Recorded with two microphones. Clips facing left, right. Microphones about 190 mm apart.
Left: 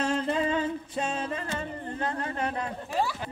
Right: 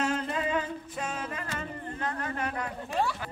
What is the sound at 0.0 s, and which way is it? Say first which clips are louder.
Music: left 3 dB; 30° left (ahead or behind).